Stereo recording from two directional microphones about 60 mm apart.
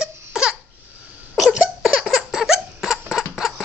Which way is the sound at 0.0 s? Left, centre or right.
Centre.